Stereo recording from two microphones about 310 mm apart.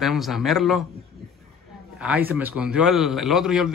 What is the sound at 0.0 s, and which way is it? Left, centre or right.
Speech, centre.